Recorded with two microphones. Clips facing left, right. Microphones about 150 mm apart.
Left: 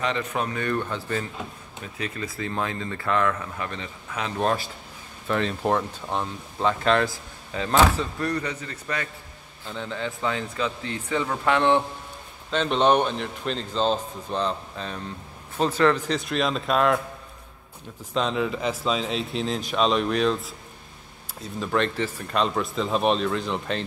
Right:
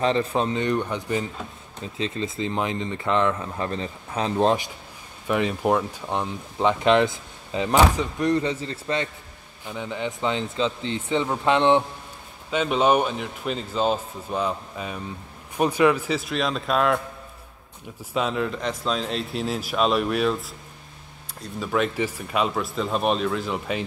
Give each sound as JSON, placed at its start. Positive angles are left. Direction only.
{"t": 0.0, "sound": "speech", "side_deg": -30}
{"t": 5.3, "sound": "speech", "side_deg": -10}
{"t": 12.4, "sound": "a man's voice", "side_deg": -10}
{"t": 18.1, "sound": "a man's voice", "side_deg": 0}